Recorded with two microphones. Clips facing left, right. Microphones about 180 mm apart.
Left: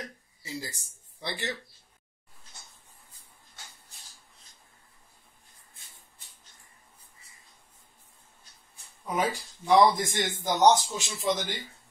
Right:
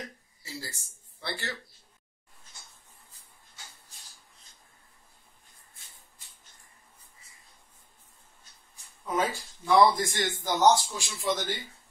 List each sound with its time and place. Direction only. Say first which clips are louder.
0.4 s speech: left 3 dB; 20° left (ahead or behind)
9.0 s speech: even; 15° left (ahead or behind)